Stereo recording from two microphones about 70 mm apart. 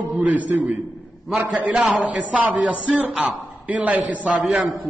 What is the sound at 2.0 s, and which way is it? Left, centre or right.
A man's voice, centre.